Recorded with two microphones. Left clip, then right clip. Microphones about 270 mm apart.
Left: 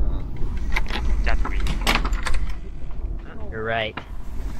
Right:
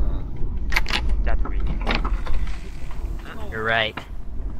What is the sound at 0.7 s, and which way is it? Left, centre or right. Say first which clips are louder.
Vehicle: right 5 dB; right.